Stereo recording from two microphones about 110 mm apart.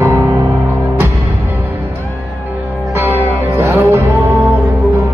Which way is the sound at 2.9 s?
20° right (ahead or behind).